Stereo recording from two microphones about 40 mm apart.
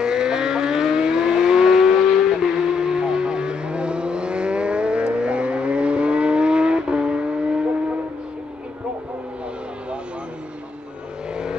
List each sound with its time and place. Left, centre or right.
0.0 s vehicle: centre